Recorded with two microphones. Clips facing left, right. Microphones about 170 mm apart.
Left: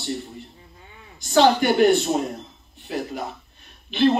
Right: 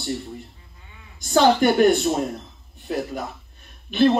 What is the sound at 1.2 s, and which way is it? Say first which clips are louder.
Speech: even; 45° right (ahead or behind).